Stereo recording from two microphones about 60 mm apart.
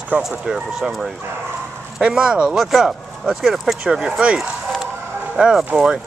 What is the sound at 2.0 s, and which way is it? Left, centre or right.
Speech, centre.